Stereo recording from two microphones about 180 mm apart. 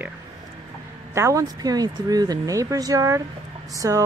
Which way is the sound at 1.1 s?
15° right (ahead or behind).